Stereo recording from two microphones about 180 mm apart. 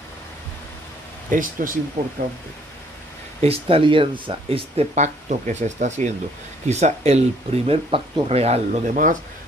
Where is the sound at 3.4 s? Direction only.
30° right (ahead or behind).